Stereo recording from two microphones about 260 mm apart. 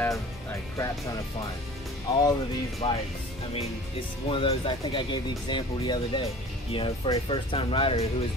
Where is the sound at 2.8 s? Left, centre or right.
Centre.